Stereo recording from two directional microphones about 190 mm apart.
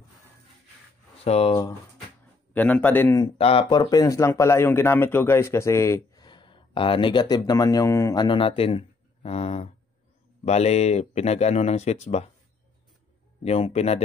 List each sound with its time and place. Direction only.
1.2 s speech: 30° left (ahead or behind)
2.5 s a man's voice: 10° left (ahead or behind)
3.3 s speech: 30° left (ahead or behind)
3.8 s speech: 20° left (ahead or behind); by 12.3 s 35° left (ahead or behind)
13.4 s speech: 35° left (ahead or behind)